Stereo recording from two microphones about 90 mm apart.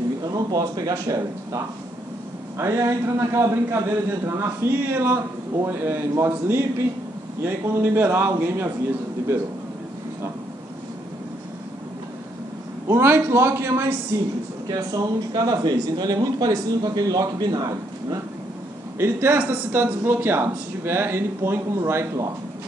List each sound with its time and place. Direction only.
0.2 s speech: 45° right (ahead or behind)
2.8 s a man's voice: 35° right (ahead or behind)
12.8 s a man's voice: 30° right (ahead or behind)
14.7 s speech: 45° right (ahead or behind)
18.9 s a man's voice: 30° right (ahead or behind)